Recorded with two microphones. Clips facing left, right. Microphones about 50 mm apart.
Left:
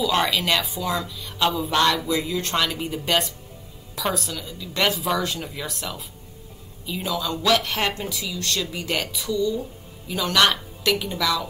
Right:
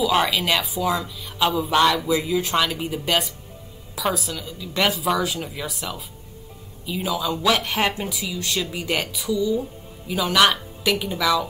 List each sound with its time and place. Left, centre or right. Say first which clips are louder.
0.0 s a woman's voice: right 2 dB; centre